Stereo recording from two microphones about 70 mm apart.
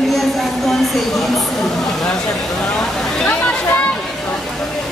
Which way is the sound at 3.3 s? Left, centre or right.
Centre.